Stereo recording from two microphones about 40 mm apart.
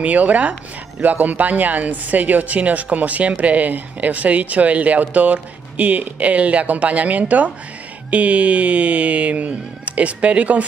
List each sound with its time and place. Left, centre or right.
0.0 s speech: right